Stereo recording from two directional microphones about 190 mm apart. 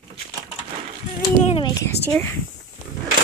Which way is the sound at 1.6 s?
20° left (ahead or behind).